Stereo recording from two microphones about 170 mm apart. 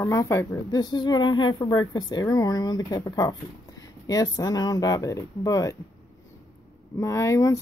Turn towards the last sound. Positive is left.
turn(degrees=20)  # may be behind; listen again after turning